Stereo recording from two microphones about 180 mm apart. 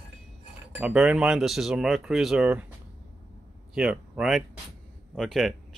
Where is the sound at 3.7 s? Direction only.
5° right (ahead or behind).